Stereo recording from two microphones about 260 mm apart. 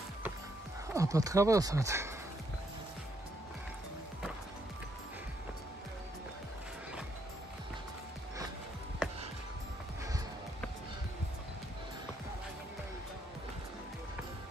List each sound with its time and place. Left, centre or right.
0.9 s speech: centre